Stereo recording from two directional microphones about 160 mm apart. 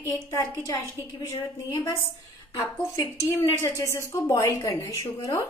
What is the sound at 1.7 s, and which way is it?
A woman's voice, 15° left (ahead or behind).